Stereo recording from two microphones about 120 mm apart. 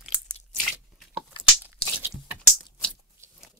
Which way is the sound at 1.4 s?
15° right (ahead or behind).